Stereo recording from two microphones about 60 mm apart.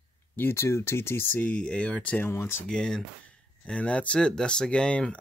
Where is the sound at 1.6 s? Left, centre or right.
Centre.